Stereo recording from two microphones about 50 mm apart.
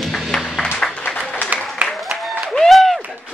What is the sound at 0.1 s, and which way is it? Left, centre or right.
Music, centre.